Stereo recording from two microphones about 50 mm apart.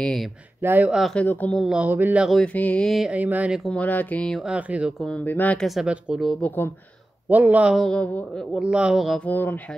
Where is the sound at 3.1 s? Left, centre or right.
Right.